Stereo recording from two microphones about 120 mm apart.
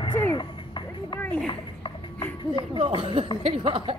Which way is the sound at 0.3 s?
40° left (ahead or behind).